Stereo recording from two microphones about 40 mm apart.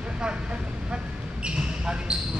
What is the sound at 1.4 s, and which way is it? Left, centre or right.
Basketball bounce, right.